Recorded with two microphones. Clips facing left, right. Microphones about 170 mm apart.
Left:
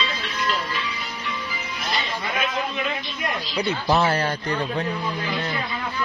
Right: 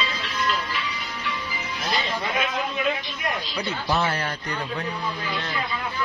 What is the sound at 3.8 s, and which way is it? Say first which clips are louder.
Speech: left 4 dB; 35° left (ahead or behind).